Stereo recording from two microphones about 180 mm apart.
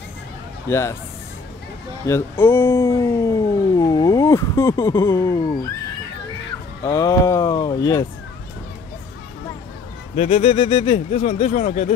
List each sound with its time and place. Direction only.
0.7 s speech: 15° left (ahead or behind)
2.0 s speech: 15° left (ahead or behind)
6.8 s speech: 20° left (ahead or behind)
10.1 s speech: 35° left (ahead or behind)